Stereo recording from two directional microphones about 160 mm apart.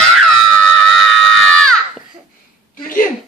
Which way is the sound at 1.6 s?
5° left (ahead or behind).